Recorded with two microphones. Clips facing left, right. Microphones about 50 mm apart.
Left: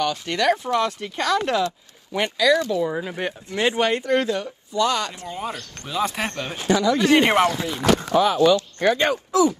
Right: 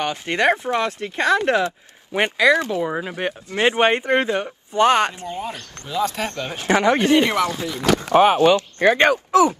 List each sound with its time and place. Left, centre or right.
0.0 s speech: right
2.9 s speech: right
3.4 s speech: right
5.4 s speech: left
6.0 s speech: left
6.7 s speech: right
7.2 s speech: left
8.1 s speech: right